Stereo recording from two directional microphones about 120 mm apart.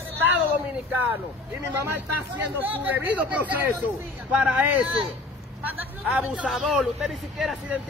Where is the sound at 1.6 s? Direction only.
20° right (ahead or behind).